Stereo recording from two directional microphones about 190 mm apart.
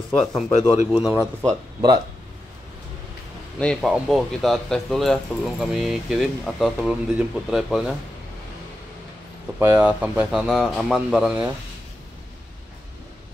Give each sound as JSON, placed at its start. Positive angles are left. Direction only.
{"t": 0.5, "sound": "speech", "side_deg": 40}
{"t": 0.9, "sound": "speech", "side_deg": -5}
{"t": 1.4, "sound": "speech", "side_deg": -20}
{"t": 3.5, "sound": "speech", "side_deg": 5}
{"t": 9.6, "sound": "speech", "side_deg": -10}